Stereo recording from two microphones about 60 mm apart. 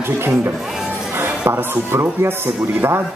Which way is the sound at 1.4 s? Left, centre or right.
Right.